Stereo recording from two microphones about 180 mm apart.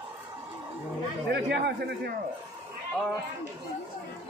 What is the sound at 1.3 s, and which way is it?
Speech, 65° right (ahead or behind).